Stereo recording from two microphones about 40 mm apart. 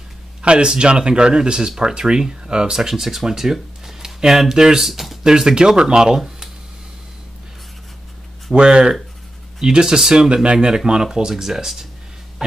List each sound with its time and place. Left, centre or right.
0.4 s speech: right; by 5.2 s centre
5.2 s speech: centre
8.5 s speech: right; by 11.9 s centre
12.4 s music: centre